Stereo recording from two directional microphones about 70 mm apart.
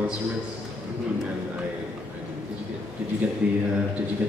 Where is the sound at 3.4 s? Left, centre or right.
Right.